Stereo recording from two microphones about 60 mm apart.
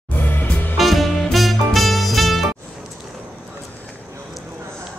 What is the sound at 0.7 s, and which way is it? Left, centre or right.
Music, centre.